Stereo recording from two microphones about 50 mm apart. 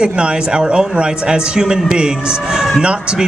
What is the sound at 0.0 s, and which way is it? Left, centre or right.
A man's voice, centre.